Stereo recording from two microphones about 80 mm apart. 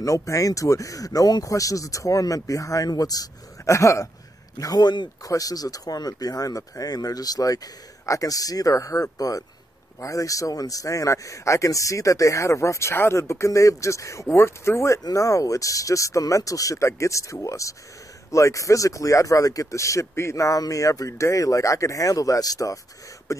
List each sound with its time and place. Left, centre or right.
0.0 s speech: left
3.6 s speech: left
4.6 s speech: left
5.2 s speech: left